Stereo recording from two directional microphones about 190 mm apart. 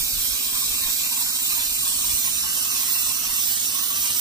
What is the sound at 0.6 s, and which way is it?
Squeal, 20° right (ahead or behind).